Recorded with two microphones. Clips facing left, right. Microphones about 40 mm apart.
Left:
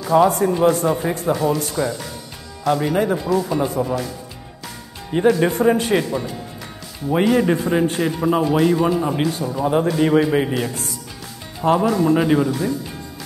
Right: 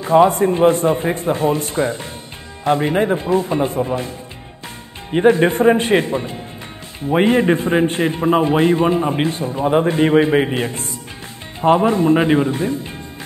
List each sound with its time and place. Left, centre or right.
0.0 s a man's voice: right
5.1 s a man's voice: right